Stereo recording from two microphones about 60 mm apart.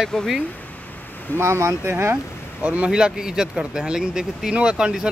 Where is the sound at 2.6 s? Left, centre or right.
Right.